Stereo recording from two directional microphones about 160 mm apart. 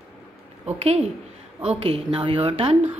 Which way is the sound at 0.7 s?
40° right (ahead or behind).